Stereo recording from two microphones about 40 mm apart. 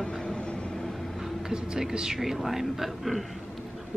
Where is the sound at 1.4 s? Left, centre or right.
Centre.